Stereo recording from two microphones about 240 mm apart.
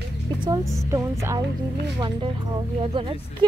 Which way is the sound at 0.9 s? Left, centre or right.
Centre.